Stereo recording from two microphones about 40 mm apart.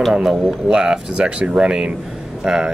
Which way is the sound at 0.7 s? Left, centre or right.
Centre.